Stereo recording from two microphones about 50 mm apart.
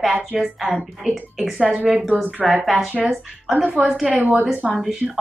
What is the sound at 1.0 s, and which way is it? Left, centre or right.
Speech, centre.